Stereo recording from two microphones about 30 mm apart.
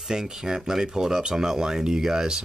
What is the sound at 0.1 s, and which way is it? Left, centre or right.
Speech, right.